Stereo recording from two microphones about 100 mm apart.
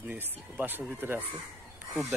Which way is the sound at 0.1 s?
15° right (ahead or behind).